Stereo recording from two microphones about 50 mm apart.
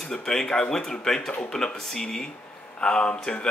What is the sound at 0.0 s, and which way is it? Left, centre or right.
Speech, centre.